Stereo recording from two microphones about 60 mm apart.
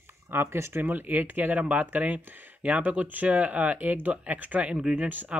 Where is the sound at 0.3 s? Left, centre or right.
Right.